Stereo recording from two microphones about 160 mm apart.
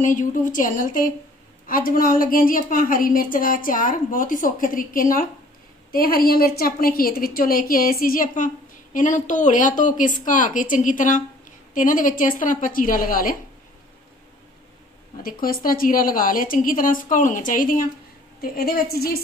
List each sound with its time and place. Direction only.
0.0 s a woman's voice: 55° left (ahead or behind)
15.2 s a woman's voice: 65° left (ahead or behind)
18.4 s a woman's voice: 75° left (ahead or behind)